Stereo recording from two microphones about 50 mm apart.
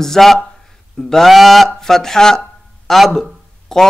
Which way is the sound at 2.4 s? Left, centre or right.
Centre.